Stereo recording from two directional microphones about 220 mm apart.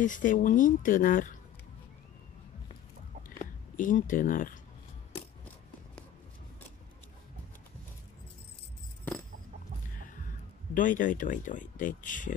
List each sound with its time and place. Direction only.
0.0 s speech: 35° left (ahead or behind)
3.7 s speech: 35° left (ahead or behind)
9.9 s speech: 35° left (ahead or behind)